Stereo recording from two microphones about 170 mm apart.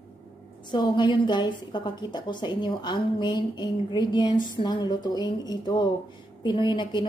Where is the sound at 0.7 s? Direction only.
25° left (ahead or behind).